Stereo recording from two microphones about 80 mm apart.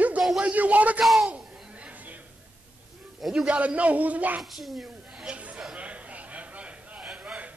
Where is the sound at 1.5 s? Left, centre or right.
Centre.